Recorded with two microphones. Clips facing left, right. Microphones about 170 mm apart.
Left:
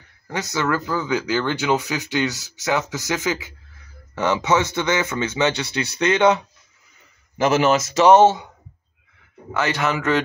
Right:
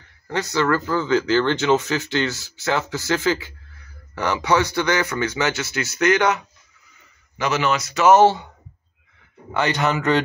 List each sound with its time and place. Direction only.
0.3 s speech: 15° left (ahead or behind)
7.3 s a man's voice: 50° left (ahead or behind)
8.1 s speech: 20° left (ahead or behind)
9.5 s speech: 5° left (ahead or behind)